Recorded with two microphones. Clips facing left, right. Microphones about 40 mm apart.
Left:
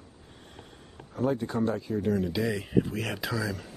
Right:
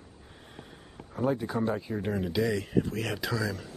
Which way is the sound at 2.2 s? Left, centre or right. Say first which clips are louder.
Right 1 dB; centre.